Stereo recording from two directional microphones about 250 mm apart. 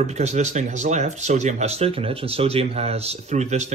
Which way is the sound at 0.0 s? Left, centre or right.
Right.